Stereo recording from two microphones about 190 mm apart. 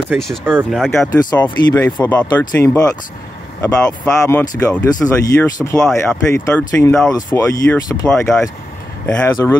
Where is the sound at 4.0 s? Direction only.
10° left (ahead or behind).